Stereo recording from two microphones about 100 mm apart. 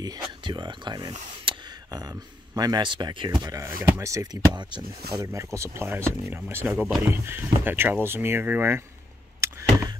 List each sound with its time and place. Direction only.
0.0 s speech: 45° right (ahead or behind)
1.9 s speech: 40° right (ahead or behind)
3.4 s speech: 30° right (ahead or behind); by 4.8 s 50° right (ahead or behind)
5.2 s speech: 30° right (ahead or behind)
9.4 s a sound: 30° right (ahead or behind)